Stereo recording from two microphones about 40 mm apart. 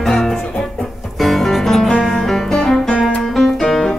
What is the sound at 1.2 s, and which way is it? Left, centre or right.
Music, centre.